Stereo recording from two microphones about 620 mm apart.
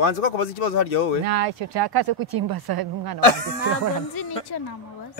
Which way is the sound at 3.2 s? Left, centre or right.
Left.